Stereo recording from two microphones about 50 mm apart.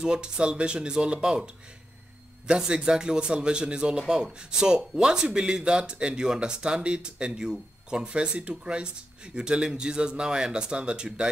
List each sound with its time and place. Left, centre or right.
0.0 s a man's voice: centre